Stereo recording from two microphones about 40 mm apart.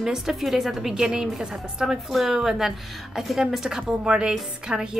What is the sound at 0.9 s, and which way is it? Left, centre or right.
A woman's voice, right.